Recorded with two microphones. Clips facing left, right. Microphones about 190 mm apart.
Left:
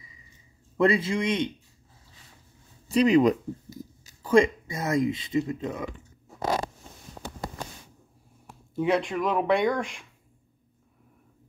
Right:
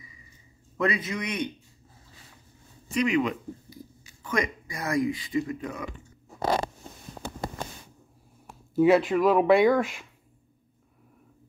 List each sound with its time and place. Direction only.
0.7 s a man's voice: 30° left (ahead or behind)
2.9 s speech: 35° left (ahead or behind)
8.7 s speech: 5° right (ahead or behind)